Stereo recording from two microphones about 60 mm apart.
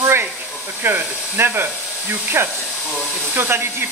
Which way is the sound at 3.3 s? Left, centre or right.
Right.